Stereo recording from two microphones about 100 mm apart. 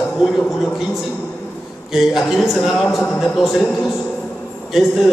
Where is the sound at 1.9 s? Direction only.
5° right (ahead or behind).